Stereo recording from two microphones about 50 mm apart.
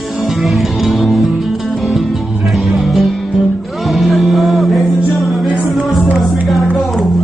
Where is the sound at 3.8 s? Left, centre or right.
Centre.